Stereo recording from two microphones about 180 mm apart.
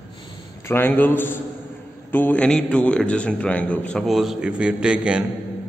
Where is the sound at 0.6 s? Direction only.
10° left (ahead or behind).